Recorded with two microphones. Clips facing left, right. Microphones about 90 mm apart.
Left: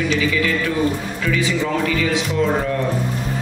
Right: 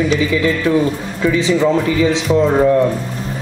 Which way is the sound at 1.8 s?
25° right (ahead or behind).